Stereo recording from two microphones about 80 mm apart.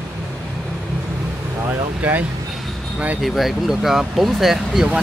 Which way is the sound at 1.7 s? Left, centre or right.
Right.